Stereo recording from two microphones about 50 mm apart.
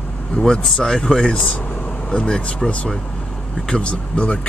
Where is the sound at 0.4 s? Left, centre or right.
Centre.